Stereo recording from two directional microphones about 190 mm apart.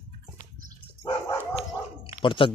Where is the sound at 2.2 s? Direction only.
30° left (ahead or behind).